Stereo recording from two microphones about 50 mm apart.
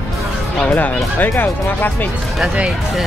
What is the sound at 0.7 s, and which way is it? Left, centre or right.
Speech, left.